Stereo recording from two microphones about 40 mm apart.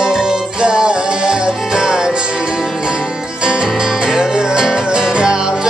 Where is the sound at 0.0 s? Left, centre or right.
Centre.